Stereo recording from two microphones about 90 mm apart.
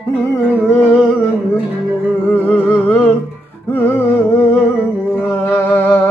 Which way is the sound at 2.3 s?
15° left (ahead or behind).